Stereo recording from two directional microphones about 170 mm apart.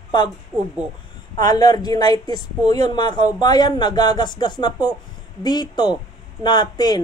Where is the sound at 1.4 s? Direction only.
25° left (ahead or behind).